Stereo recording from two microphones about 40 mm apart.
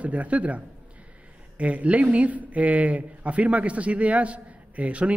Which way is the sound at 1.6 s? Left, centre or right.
Right.